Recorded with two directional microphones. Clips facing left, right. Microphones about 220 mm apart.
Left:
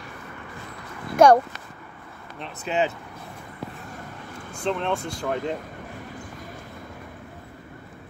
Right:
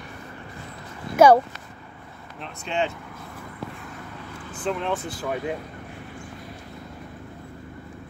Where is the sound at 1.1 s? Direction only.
5° right (ahead or behind).